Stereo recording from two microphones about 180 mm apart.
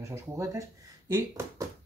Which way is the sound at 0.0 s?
15° right (ahead or behind).